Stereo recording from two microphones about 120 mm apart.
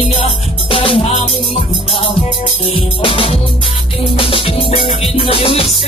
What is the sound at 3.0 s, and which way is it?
Music, 50° left (ahead or behind).